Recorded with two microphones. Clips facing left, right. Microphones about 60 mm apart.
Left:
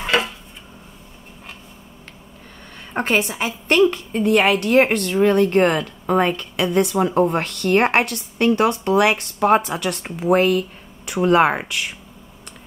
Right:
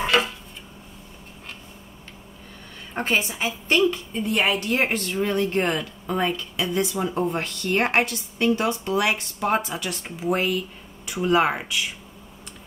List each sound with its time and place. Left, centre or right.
3.0 s a woman's voice: left